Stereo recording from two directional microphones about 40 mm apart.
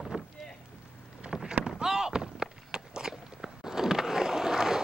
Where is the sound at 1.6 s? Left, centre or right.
Centre.